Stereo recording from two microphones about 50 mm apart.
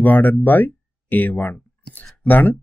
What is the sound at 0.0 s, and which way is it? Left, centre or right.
Speech, left.